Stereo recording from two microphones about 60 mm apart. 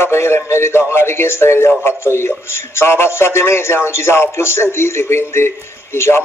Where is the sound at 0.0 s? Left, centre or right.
Left.